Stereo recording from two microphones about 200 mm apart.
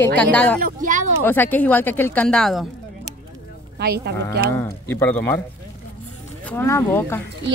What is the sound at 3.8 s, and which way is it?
Speech, 50° right (ahead or behind).